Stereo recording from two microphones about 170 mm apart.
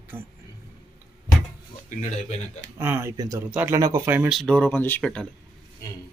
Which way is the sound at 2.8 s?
15° right (ahead or behind).